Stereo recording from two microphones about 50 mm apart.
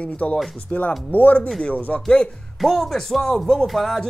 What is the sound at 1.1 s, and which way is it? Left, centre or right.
Speech, left.